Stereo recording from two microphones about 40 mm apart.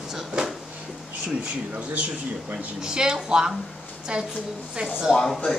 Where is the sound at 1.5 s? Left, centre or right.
Right.